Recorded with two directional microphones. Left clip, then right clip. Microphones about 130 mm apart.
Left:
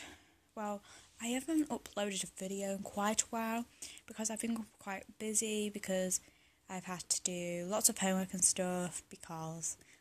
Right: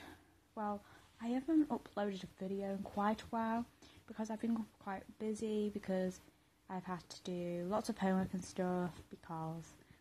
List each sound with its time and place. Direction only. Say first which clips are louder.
0.6 s speech: left 1 dB; 30° left (ahead or behind)
2.3 s speech: left 2 dB; 40° left (ahead or behind); by 9.7 s 25° left (ahead or behind)